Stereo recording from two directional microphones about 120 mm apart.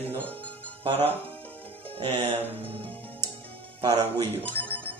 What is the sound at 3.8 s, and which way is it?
Speech, 30° right (ahead or behind).